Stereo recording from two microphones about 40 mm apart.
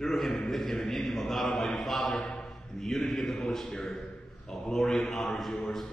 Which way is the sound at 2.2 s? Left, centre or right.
Centre.